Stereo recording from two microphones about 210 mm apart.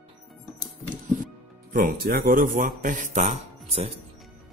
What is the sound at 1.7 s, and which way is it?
Speech, 40° right (ahead or behind).